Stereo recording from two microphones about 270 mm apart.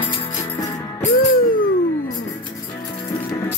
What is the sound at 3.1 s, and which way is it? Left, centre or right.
Music, centre.